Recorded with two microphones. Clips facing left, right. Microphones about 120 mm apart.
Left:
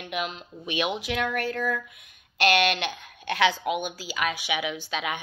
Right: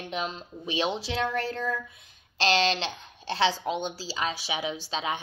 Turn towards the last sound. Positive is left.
turn(degrees=-30)  # may be behind; listen again after turning